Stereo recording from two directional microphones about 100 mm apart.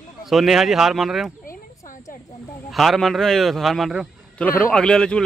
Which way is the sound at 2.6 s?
Centre (ahead or behind).